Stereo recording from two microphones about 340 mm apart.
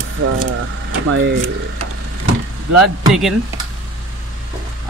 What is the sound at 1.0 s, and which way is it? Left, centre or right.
Speech, right.